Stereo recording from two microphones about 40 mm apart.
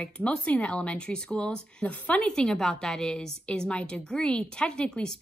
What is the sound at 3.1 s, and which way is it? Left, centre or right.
A woman's voice, centre.